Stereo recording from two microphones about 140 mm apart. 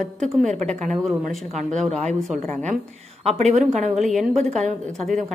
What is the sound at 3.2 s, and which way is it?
Speech, 50° right (ahead or behind).